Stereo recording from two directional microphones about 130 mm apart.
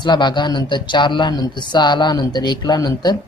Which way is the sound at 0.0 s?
35° left (ahead or behind).